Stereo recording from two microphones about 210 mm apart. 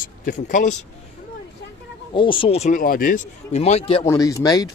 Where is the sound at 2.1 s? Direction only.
25° left (ahead or behind).